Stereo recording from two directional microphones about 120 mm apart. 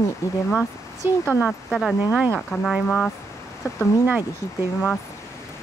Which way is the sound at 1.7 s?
Centre (ahead or behind).